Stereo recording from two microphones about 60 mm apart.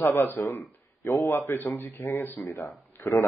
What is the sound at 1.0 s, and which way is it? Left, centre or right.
Speech, left.